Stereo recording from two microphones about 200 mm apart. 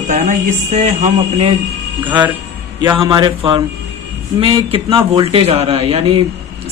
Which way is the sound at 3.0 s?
25° right (ahead or behind).